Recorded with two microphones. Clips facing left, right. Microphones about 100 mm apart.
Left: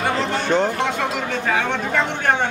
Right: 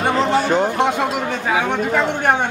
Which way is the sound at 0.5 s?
15° right (ahead or behind).